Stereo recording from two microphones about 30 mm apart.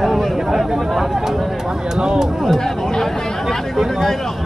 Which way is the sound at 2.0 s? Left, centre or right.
Right.